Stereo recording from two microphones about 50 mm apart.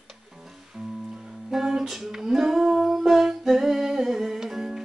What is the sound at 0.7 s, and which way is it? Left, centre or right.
Music, centre.